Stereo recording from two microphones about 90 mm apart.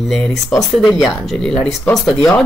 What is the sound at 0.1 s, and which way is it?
A woman's voice, centre (ahead or behind).